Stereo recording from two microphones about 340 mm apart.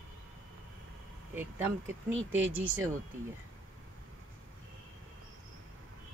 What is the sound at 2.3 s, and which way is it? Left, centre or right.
Speech, right.